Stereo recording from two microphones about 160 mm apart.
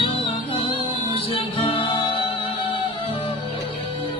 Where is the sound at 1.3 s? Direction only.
35° left (ahead or behind).